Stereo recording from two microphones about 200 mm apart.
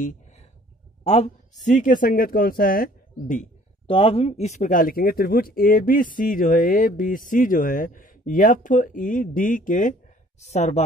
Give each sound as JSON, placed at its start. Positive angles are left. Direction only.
{"t": 0.0, "sound": "a sound", "side_deg": 40}
{"t": 1.0, "sound": "speech", "side_deg": 30}
{"t": 3.8, "sound": "speech", "side_deg": 25}